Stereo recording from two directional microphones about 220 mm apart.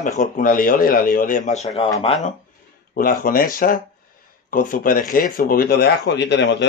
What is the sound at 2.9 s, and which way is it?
A man's voice, 40° left (ahead or behind).